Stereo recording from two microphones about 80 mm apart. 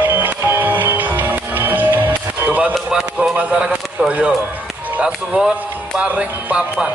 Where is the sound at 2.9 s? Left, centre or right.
Centre.